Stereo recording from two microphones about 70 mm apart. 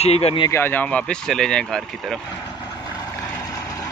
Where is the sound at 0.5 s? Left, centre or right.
Left.